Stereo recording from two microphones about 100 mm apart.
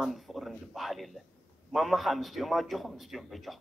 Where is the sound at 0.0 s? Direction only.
Centre (ahead or behind).